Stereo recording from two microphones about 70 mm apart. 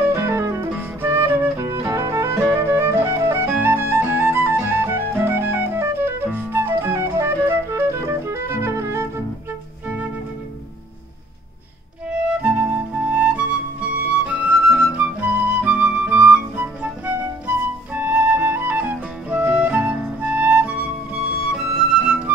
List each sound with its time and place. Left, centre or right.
0.0 s music: right
2.6 s music: right
3.4 s music: right
12.1 s music: centre
17.9 s flute: right